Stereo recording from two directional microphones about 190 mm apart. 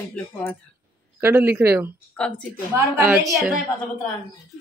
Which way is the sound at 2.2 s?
5° left (ahead or behind).